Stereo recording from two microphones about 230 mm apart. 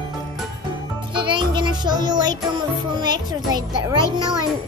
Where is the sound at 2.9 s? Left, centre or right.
Centre.